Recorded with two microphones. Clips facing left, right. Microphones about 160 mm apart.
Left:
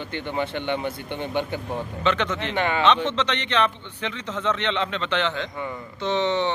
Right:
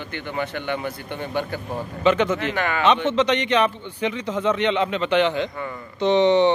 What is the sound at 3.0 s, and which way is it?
Speech, 10° right (ahead or behind).